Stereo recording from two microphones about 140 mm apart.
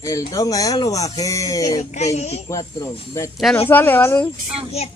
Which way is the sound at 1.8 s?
55° left (ahead or behind).